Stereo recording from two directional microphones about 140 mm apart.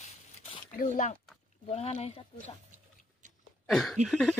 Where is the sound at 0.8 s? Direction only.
65° left (ahead or behind).